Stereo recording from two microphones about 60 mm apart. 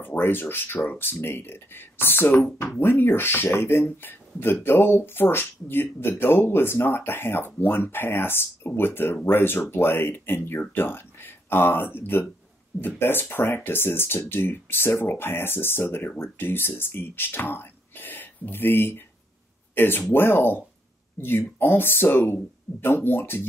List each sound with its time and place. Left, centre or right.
0.0 s speech: left